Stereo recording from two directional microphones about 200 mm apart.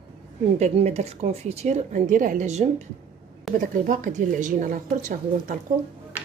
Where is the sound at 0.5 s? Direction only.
35° right (ahead or behind).